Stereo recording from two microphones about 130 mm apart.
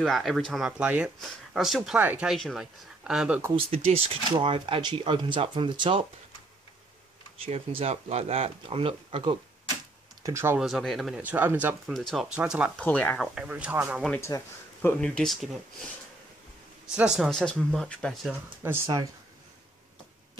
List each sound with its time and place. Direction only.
0.0 s speech: centre (ahead or behind)
2.3 s speech: centre (ahead or behind)
3.5 s speech: 45° right (ahead or behind)
7.4 s speech: 50° right (ahead or behind)
10.2 s speech: 20° right (ahead or behind)
10.6 s speech: centre (ahead or behind)
11.2 s speech: 15° right (ahead or behind)
11.9 s speech: centre (ahead or behind)
12.8 s speech: 10° left (ahead or behind)
13.2 s speech: 5° right (ahead or behind)
14.2 s speech: 20° left (ahead or behind)
16.8 s speech: 5° right (ahead or behind)
17.3 s speech: 5° left (ahead or behind)
18.6 s speech: 20° right (ahead or behind)